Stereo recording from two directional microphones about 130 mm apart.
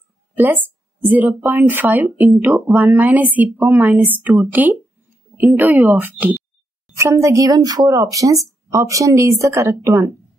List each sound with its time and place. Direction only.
1.0 s speech: 15° right (ahead or behind)